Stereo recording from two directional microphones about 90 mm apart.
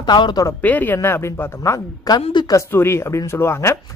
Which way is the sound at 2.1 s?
45° left (ahead or behind).